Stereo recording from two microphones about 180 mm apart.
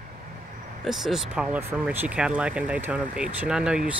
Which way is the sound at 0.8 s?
Centre (ahead or behind).